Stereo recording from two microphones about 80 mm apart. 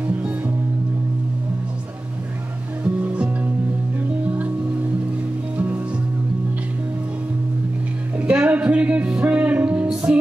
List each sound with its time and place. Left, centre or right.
2.8 s music: right
8.2 s music: centre